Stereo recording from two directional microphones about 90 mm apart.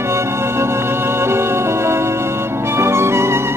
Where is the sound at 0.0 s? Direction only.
30° right (ahead or behind).